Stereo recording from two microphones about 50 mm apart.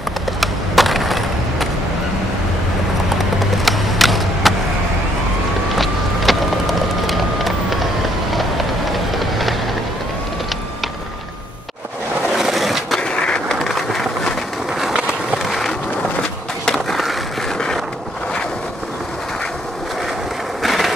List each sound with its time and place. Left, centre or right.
0.4 s skateboard: centre
3.5 s a sound: centre
6.3 s a sound: centre
8.9 s train: centre
12.4 s skateboard: centre
13.0 s skateboard: centre
16.9 s skateboard: centre
20.6 s train: centre